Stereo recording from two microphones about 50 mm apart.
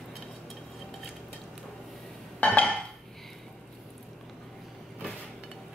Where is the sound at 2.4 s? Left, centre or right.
Left.